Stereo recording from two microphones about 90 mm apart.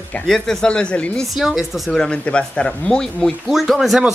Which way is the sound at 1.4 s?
5° right (ahead or behind).